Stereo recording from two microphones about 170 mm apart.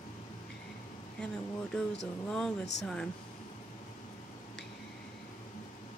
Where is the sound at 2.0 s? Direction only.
5° left (ahead or behind).